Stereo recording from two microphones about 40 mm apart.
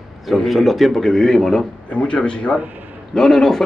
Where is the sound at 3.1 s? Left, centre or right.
Centre.